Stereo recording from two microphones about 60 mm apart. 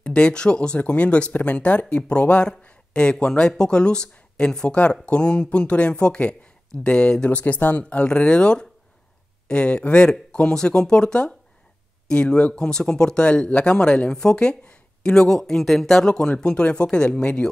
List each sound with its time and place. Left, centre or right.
0.0 s speech: centre